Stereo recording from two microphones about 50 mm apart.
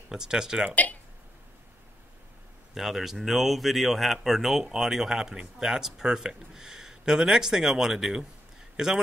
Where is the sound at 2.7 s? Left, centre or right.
Centre.